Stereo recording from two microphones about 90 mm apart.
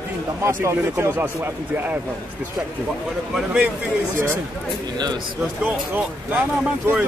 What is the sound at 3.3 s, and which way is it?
Speech, 10° right (ahead or behind).